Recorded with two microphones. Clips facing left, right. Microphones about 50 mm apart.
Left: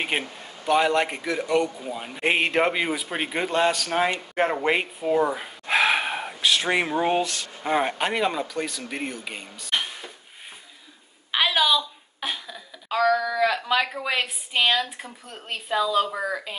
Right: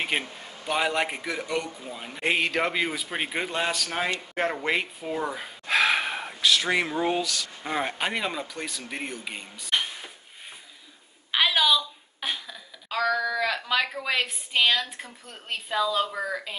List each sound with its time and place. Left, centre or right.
0.1 s speech: centre
0.7 s speech: centre
1.6 s speech: centre
2.2 s a man's voice: left
2.7 s speech: centre
4.1 s speech: centre
4.6 s gasp: centre
6.5 s speech: left
7.6 s speech: centre
8.0 s speech: centre
11.3 s speech: centre